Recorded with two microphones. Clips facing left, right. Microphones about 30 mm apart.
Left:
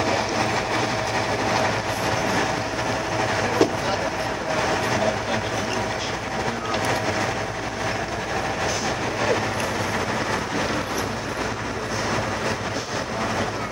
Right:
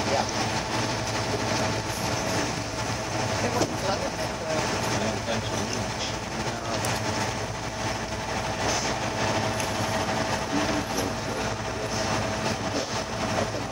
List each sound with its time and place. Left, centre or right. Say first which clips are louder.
0.0 s train: left 4 dB; centre